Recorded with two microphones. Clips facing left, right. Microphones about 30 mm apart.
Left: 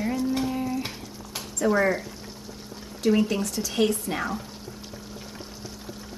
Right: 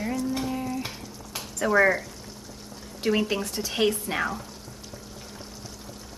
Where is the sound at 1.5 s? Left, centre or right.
Centre.